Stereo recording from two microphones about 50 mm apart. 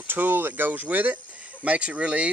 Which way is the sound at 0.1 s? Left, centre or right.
Right.